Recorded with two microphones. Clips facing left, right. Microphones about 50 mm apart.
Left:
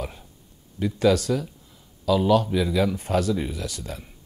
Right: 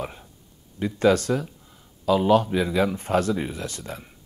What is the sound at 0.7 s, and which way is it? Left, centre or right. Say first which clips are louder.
Speech: right 1 dB; right.